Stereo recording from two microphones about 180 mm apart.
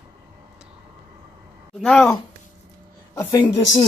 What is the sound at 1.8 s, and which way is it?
Speech, 5° left (ahead or behind).